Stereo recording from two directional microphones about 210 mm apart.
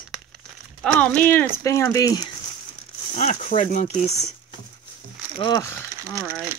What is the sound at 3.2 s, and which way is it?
Speech, 35° left (ahead or behind).